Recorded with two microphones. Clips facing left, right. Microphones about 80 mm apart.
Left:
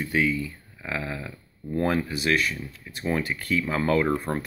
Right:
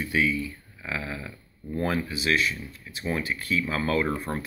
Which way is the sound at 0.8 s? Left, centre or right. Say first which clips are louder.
Left 2 dB; left.